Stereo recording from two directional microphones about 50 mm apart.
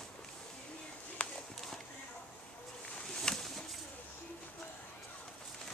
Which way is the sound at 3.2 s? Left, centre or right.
Centre.